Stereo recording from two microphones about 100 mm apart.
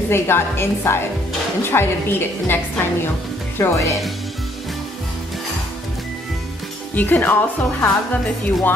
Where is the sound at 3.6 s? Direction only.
30° left (ahead or behind).